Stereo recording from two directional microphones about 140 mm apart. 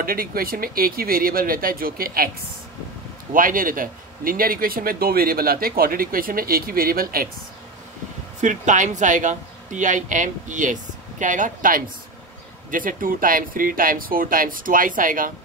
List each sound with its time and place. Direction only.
0.0 s a man's voice: 90° right
3.3 s a man's voice: 80° right
8.4 s a woman's voice: 60° right (ahead or behind)